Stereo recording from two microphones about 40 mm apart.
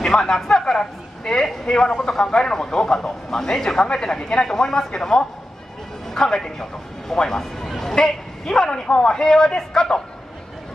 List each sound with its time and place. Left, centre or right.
0.0 s a woman's voice: centre